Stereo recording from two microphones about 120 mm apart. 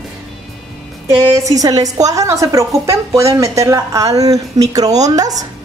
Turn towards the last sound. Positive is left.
turn(degrees=-30)  # may be behind; listen again after turning